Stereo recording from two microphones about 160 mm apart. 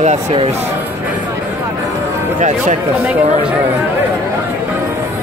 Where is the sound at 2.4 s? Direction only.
50° right (ahead or behind).